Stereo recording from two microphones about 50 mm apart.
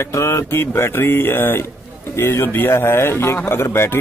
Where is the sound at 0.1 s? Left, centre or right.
Left.